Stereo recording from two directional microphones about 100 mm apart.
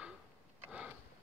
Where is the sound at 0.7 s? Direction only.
10° right (ahead or behind).